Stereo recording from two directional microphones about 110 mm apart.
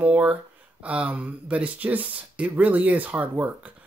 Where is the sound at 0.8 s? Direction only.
15° right (ahead or behind).